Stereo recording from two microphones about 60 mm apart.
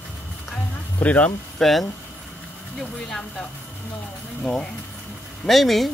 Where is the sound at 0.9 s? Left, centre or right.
Left.